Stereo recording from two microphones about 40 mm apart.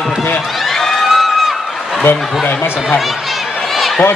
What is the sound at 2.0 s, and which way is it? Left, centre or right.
Speech, left.